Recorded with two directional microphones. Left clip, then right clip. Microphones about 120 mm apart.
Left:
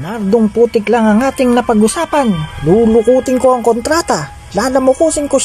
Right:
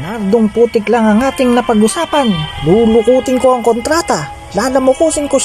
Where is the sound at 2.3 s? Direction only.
25° right (ahead or behind).